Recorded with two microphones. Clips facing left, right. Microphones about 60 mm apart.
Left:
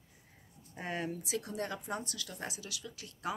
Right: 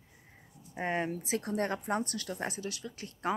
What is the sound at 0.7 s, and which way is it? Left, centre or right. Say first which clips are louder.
Speech: right 5 dB; right.